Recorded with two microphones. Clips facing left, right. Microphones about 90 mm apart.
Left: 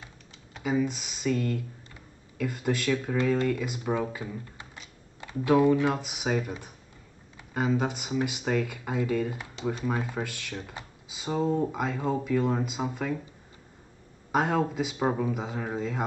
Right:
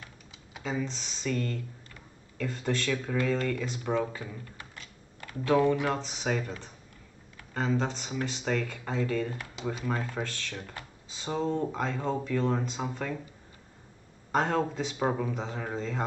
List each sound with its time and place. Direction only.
0.6 s speech: 10° left (ahead or behind)
4.6 s typing: 15° left (ahead or behind)
5.9 s speech: 10° left (ahead or behind)
14.3 s speech: 5° left (ahead or behind)